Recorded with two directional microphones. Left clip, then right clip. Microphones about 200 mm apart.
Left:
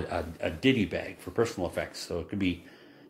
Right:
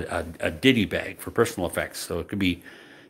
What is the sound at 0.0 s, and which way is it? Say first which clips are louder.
Speech: right 4 dB; 20° right (ahead or behind).